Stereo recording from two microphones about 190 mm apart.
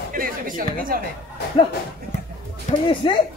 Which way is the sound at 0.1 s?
50° right (ahead or behind).